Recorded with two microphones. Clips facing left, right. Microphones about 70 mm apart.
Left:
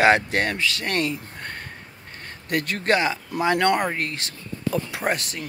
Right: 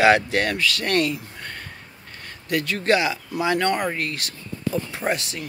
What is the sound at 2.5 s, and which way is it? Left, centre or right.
Speech, left.